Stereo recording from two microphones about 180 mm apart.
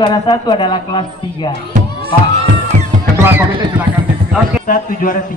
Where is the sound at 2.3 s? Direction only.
40° right (ahead or behind).